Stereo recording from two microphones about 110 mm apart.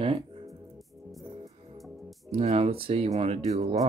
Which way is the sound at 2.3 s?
70° right (ahead or behind).